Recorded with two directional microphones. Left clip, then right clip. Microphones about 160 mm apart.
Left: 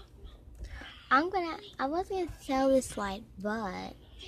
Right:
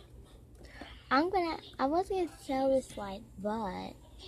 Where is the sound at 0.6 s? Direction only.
5° right (ahead or behind).